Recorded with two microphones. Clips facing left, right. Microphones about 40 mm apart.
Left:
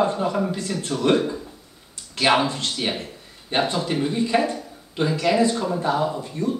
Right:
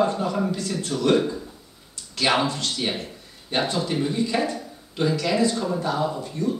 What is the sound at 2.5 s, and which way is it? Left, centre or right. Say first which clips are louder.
Speech: even; left.